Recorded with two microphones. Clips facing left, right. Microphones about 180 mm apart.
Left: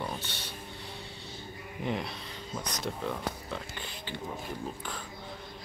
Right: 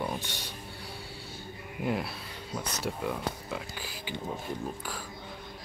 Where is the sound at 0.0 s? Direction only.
15° right (ahead or behind).